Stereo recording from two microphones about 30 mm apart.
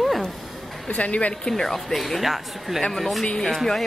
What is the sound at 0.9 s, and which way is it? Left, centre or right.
Speech, left.